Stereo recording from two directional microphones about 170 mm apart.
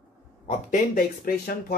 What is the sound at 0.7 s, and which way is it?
Speech, 60° left (ahead or behind).